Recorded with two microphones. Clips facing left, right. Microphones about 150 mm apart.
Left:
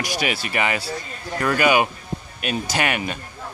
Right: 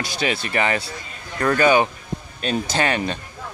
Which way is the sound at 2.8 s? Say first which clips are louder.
Right 3 dB; 30° right (ahead or behind).